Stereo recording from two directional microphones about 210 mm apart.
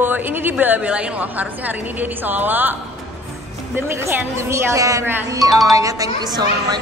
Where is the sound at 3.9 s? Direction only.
10° right (ahead or behind).